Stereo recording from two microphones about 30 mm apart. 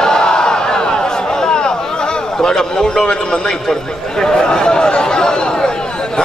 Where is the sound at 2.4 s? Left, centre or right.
Centre.